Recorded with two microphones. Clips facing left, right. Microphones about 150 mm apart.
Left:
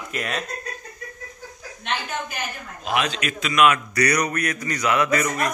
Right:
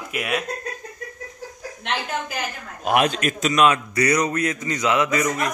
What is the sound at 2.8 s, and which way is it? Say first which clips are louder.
A man's voice: right 5 dB; 55° right (ahead or behind).